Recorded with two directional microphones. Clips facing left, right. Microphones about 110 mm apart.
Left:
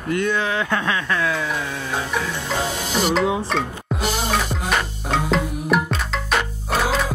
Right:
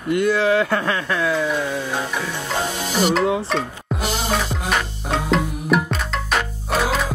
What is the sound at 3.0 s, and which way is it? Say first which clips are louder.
Speech: right 2 dB; centre (ahead or behind).